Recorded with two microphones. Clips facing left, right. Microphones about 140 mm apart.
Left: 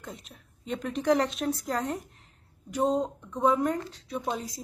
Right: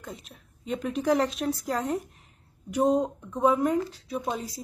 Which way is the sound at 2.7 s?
10° right (ahead or behind).